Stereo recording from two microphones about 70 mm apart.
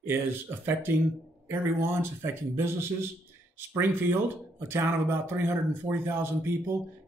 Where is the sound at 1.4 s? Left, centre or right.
Right.